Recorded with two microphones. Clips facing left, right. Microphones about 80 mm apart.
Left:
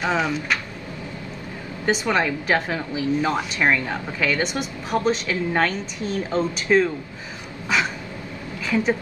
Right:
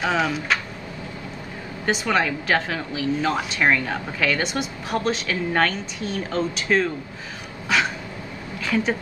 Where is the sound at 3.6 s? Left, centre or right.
Centre.